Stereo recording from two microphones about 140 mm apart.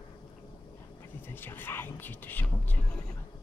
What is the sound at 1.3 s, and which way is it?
Speech, 15° left (ahead or behind).